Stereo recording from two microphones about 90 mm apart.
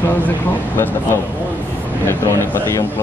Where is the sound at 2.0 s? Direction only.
30° left (ahead or behind).